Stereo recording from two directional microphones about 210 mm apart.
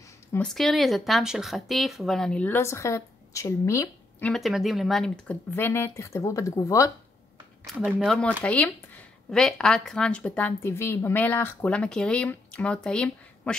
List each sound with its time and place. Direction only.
0.3 s speech: 5° left (ahead or behind)
4.3 s speech: centre (ahead or behind)
7.6 s speech: centre (ahead or behind)